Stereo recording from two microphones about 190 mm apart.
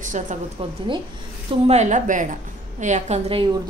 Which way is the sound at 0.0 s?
40° right (ahead or behind).